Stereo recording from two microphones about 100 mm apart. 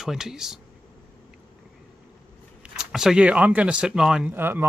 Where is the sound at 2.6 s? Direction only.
5° right (ahead or behind).